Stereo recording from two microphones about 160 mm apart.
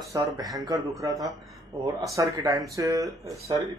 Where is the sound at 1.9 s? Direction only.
20° right (ahead or behind).